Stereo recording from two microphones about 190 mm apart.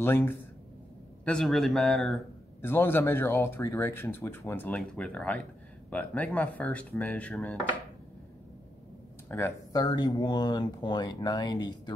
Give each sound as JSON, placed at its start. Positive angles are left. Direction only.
{"t": 0.0, "sound": "a man's voice", "side_deg": 10}
{"t": 2.6, "sound": "speech", "side_deg": 10}
{"t": 9.3, "sound": "speech", "side_deg": 15}